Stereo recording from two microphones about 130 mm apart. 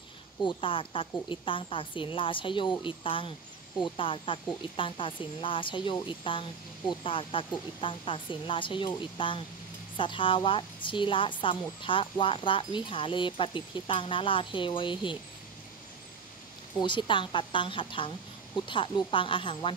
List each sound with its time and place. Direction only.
0.4 s a woman's voice: 40° left (ahead or behind)
16.8 s a woman's voice: 40° left (ahead or behind)